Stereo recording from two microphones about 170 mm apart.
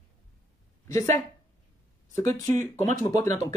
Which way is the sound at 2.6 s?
45° right (ahead or behind).